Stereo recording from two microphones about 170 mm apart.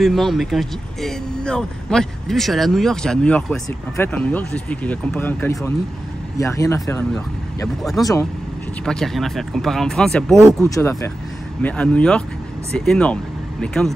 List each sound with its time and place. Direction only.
0.0 s speech: centre (ahead or behind); by 8.3 s 20° left (ahead or behind)
8.8 s speech: 5° left (ahead or behind)
10.6 s speech: 15° left (ahead or behind)